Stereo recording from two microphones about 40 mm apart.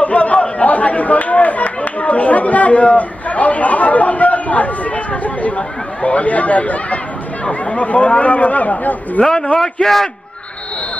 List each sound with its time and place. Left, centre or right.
0.0 s chatter: left
1.8 s a man's voice: left
9.6 s a man's voice: centre